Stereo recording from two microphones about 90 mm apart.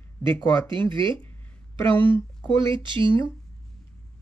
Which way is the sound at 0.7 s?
65° right (ahead or behind).